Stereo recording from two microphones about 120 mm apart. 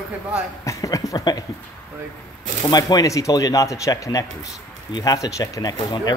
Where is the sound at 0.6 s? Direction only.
30° left (ahead or behind).